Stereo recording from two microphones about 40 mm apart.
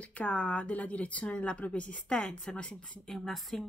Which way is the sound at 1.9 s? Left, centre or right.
Centre.